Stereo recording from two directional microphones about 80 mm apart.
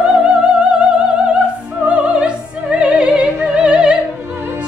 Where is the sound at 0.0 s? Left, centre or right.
Centre.